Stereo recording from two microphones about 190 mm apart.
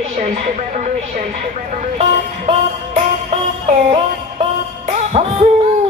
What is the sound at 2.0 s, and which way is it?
Music, 35° right (ahead or behind).